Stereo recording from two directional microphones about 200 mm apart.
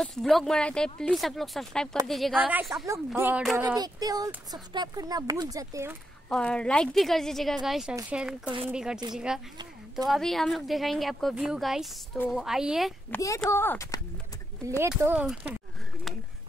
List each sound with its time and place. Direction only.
0.0 s speech: centre (ahead or behind); by 5.9 s 15° right (ahead or behind)
6.2 s speech: 5° left (ahead or behind)
13.4 s speech: 10° left (ahead or behind)
14.8 s speech: 10° right (ahead or behind)